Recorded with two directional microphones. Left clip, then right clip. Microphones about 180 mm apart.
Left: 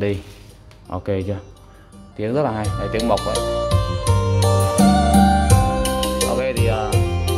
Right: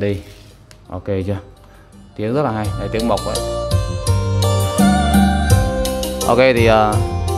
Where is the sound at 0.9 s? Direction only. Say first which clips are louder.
Even; 10° left (ahead or behind).